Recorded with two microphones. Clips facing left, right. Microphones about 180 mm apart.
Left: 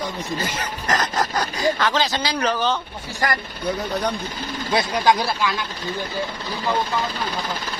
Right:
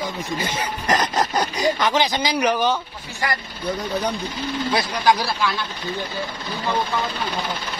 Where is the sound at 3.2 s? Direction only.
45° left (ahead or behind).